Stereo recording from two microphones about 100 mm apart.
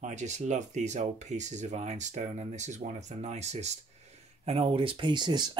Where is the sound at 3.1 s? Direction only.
90° right.